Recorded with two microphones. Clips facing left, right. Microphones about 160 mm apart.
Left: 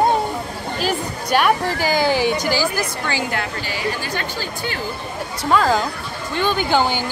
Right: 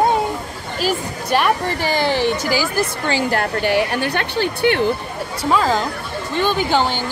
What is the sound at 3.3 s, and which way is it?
Speech, 55° right (ahead or behind).